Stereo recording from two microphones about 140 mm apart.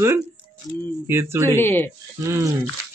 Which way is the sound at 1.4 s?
15° left (ahead or behind).